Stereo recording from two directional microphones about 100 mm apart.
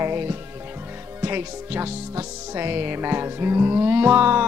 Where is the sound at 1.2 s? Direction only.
20° right (ahead or behind).